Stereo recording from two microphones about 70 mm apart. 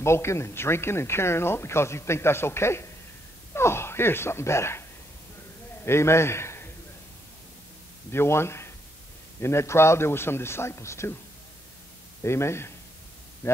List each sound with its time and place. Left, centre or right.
0.0 s speech: left
5.9 s a man's voice: left
8.1 s speech: left
12.2 s speech: left